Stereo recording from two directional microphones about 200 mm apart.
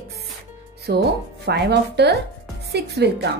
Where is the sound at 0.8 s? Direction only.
55° right (ahead or behind).